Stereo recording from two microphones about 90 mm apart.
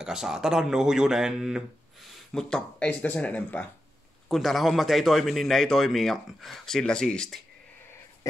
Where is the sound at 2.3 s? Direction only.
10° left (ahead or behind).